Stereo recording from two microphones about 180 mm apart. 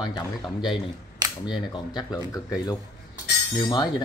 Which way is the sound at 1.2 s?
20° right (ahead or behind).